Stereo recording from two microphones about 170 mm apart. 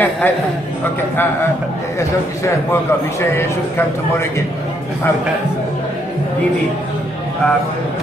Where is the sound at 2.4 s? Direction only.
15° left (ahead or behind).